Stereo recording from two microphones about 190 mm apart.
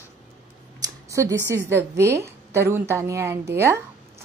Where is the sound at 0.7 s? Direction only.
15° right (ahead or behind).